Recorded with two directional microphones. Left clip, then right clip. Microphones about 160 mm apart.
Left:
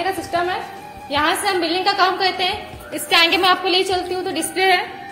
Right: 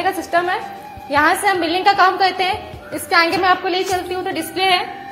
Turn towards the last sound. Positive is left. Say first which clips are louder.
# even
turn(degrees=5)  # may be behind; listen again after turning